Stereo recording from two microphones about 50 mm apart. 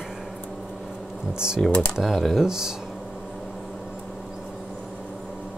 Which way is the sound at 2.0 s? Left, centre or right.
Centre.